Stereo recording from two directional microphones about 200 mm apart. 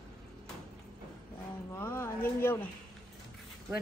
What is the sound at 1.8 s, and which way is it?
Speech, 10° left (ahead or behind).